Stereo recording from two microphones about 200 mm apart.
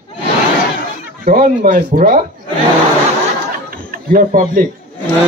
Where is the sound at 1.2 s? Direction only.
45° right (ahead or behind).